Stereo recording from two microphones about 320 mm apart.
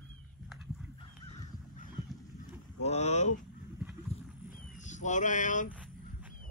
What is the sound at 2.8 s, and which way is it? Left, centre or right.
Speech, left.